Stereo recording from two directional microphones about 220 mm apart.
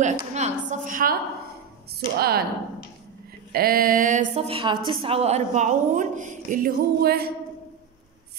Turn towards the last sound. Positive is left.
turn(degrees=-45)  # may be behind; listen again after turning